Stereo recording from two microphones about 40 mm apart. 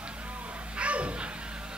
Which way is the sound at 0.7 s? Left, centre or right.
Right.